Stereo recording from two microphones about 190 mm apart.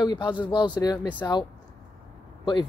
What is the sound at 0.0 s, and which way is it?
Speech, 25° left (ahead or behind).